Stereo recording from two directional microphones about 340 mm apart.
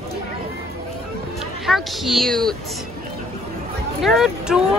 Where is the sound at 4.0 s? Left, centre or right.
Centre.